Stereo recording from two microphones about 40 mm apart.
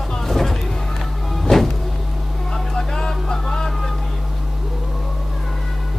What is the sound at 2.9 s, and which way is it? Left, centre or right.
Vehicle, centre.